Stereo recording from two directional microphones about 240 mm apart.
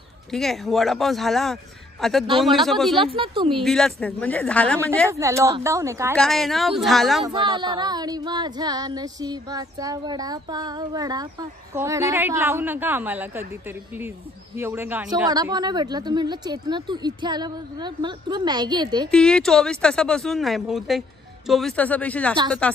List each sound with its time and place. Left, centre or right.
0.3 s speech: centre
3.0 s speech: right
3.6 s speech: centre
5.1 s female singing: centre
6.1 s speech: centre
7.2 s female singing: centre
19.0 s speech: centre